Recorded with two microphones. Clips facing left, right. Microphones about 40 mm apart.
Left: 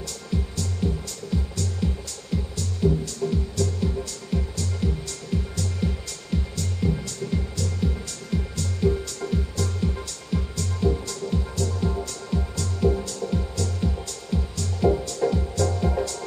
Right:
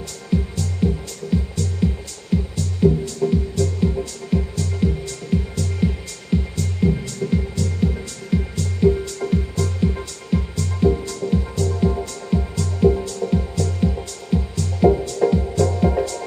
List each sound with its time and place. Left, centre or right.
0.3 s music: centre